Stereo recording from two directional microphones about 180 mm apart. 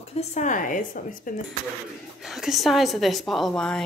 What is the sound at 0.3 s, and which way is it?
A woman's voice, 45° left (ahead or behind).